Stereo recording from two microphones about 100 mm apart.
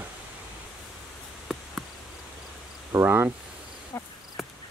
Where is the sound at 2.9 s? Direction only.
20° right (ahead or behind).